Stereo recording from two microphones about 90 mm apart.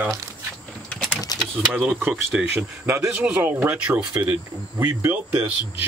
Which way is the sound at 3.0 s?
10° right (ahead or behind).